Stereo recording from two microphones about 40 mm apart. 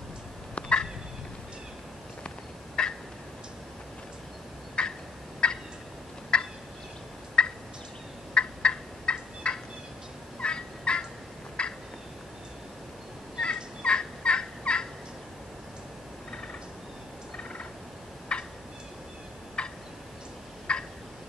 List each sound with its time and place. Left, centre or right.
0.6 s fowl: left
2.2 s fowl: left
4.8 s fowl: left
5.4 s turkey: left
8.4 s fowl: left
11.6 s a sound: left
13.8 s fowl: left
17.4 s gobble: left
18.3 s turkey: left
19.6 s turkey: left
20.7 s a sound: left